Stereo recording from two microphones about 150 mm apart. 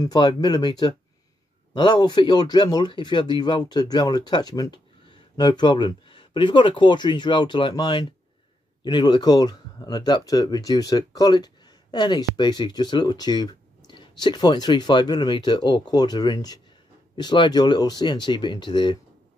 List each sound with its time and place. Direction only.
0.0 s speech: 30° left (ahead or behind)